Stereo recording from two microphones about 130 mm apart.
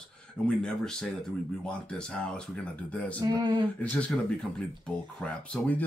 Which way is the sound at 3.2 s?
35° right (ahead or behind).